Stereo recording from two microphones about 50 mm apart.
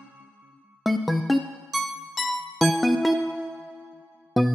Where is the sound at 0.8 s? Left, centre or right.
Centre.